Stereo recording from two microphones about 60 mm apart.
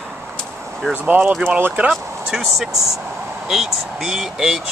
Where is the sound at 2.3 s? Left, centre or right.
Centre.